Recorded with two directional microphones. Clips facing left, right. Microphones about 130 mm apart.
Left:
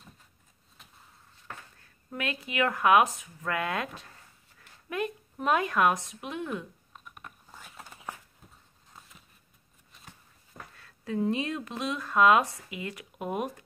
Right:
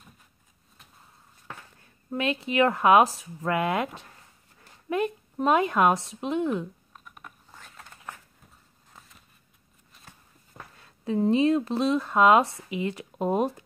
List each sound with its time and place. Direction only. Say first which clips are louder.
1.8 s speech: right 7 dB; 25° right (ahead or behind)
3.5 s a woman's voice: right 5 dB; 20° right (ahead or behind)
6.9 s computer keyboard: even; centre (ahead or behind)
10.8 s speech: right 4 dB; 30° right (ahead or behind)